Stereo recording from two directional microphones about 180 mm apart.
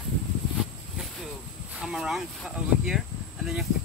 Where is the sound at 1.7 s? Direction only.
Centre (ahead or behind).